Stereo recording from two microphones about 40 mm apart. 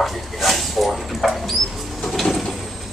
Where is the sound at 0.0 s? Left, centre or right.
Centre.